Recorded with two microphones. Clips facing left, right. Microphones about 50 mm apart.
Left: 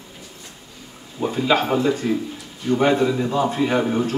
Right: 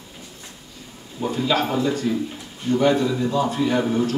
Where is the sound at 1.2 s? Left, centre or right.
Centre.